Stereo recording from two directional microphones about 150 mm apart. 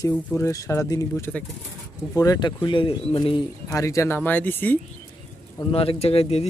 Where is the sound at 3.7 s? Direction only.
20° left (ahead or behind).